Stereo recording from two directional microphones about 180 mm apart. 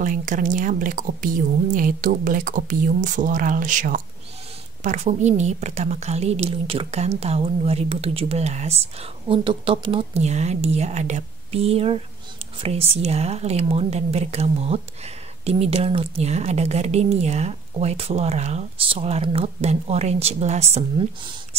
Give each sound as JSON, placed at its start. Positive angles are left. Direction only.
{"t": 0.0, "sound": "a woman's voice", "side_deg": -45}
{"t": 20.7, "sound": "speech", "side_deg": -25}